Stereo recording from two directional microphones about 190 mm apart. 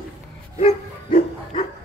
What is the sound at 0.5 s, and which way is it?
Bow-wow, 35° left (ahead or behind).